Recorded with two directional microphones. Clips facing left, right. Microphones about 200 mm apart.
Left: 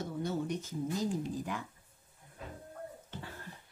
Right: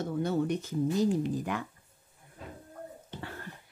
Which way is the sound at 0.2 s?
60° right (ahead or behind).